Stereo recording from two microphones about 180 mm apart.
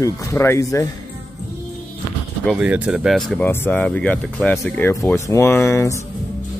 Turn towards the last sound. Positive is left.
turn(degrees=15)  # may be behind; listen again after turning